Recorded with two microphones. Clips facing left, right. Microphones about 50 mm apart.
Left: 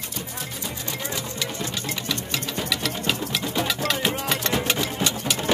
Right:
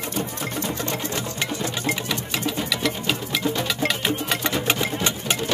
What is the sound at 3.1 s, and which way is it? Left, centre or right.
Music, centre.